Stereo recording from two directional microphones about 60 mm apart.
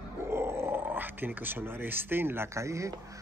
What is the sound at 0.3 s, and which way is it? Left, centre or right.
Speech, right.